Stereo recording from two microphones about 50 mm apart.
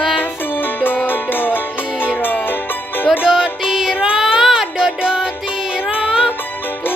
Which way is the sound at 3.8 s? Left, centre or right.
Right.